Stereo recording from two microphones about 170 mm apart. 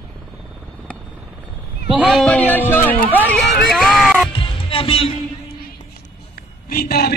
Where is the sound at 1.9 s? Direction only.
Centre (ahead or behind).